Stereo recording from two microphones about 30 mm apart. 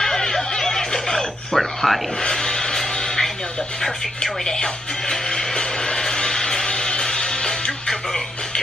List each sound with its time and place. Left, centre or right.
0.0 s a sound: centre
1.6 s speech: centre
2.2 s music: left
4.2 s speech: left
5.1 s music: left